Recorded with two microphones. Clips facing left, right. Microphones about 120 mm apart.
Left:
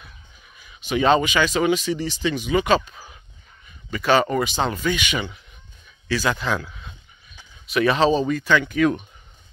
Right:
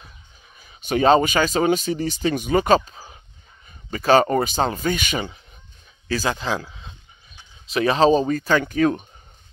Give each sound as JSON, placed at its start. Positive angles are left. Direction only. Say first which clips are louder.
{"t": 0.6, "sound": "speech", "louder": "right 2 dB", "side_deg": -40}